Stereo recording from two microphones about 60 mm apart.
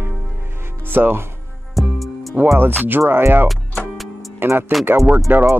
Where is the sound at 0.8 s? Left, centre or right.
Right.